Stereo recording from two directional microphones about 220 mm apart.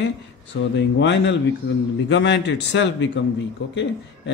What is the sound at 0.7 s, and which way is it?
Speech, 55° left (ahead or behind).